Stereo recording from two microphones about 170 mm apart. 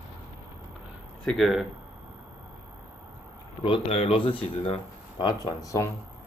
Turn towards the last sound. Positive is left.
turn(degrees=20)  # may be behind; listen again after turning